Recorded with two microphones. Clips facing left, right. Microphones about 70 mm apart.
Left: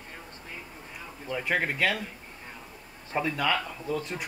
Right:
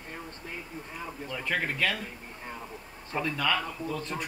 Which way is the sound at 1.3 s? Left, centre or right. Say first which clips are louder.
Left 3 dB; centre.